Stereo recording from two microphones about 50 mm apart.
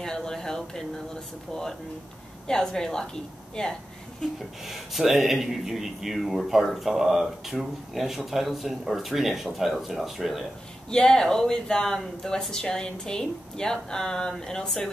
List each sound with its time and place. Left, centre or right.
0.0 s a woman's voice: centre
4.6 s speech: centre
10.9 s a woman's voice: centre